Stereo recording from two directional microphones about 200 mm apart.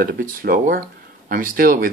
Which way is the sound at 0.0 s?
45° right (ahead or behind).